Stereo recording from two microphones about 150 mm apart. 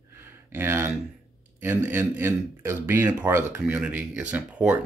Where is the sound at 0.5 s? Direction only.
15° right (ahead or behind).